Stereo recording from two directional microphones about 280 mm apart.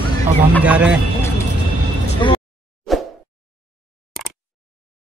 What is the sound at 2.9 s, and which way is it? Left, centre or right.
Plop, centre.